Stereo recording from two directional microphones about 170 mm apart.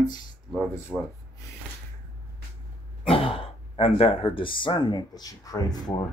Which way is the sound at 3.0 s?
35° left (ahead or behind).